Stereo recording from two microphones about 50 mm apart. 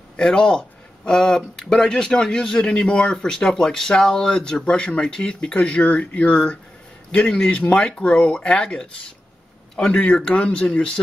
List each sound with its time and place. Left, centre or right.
0.2 s speech: centre